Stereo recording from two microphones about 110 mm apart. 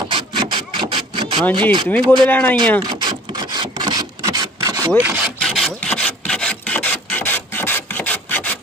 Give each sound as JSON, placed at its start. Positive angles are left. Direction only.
{"t": 0.1, "sound": "wood", "side_deg": -45}
{"t": 1.6, "sound": "speech", "side_deg": -45}
{"t": 1.9, "sound": "speech", "side_deg": 15}
{"t": 2.8, "sound": "rub", "side_deg": -40}
{"t": 4.9, "sound": "speech", "side_deg": -15}
{"t": 5.4, "sound": "wood", "side_deg": 0}
{"t": 5.9, "sound": "filing", "side_deg": 10}